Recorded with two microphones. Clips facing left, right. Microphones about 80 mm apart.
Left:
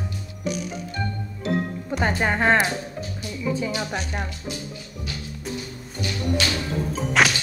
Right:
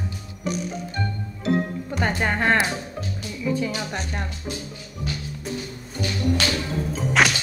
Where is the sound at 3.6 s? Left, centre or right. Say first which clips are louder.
Left 1 dB; centre.